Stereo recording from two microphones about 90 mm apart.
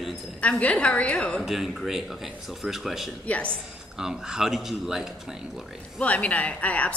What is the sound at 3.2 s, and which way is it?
Speech, 15° left (ahead or behind).